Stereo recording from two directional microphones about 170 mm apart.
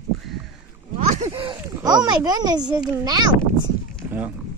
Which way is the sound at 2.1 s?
25° right (ahead or behind).